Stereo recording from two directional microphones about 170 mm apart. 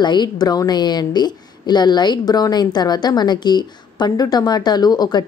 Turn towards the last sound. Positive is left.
turn(degrees=25)  # may be behind; listen again after turning